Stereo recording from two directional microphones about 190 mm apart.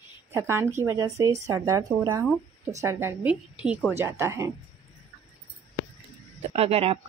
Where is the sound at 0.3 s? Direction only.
15° right (ahead or behind).